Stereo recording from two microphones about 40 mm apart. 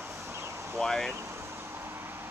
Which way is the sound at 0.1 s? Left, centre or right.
Right.